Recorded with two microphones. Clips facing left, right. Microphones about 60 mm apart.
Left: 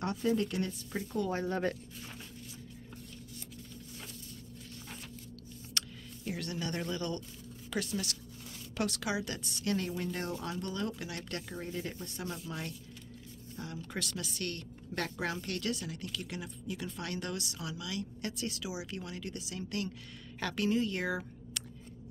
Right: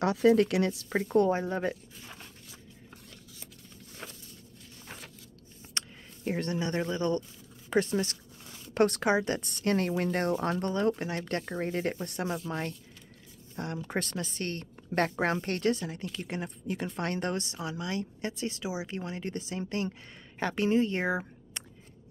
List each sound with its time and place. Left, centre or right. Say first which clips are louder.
0.0 s speech: right 9 dB; right
0.9 s speech: right 10 dB; right
1.3 s speech: right 3 dB; centre
5.8 s a woman's voice: right 2 dB; right
10.4 s speech: right 9 dB; right
12.5 s a woman's voice: right 7 dB; right
13.7 s a woman's voice: right 6 dB; right